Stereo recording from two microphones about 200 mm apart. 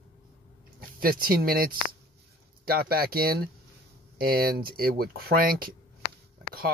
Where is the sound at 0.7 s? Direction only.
45° right (ahead or behind).